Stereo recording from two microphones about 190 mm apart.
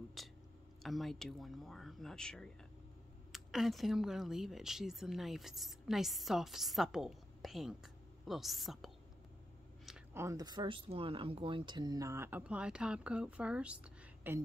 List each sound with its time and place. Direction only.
0.2 s a sound: centre (ahead or behind)
0.8 s speech: centre (ahead or behind)
10.1 s speech: 20° right (ahead or behind)